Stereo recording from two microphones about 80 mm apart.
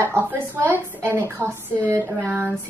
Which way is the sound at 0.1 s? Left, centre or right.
Right.